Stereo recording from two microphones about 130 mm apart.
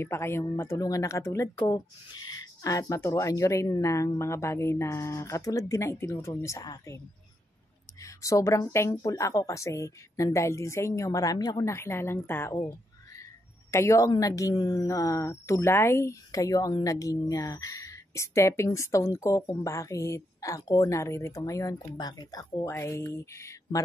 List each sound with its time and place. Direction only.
0.0 s a woman's voice: 20° left (ahead or behind)
8.0 s a woman's voice: 25° left (ahead or behind)
13.7 s a woman's voice: 20° left (ahead or behind)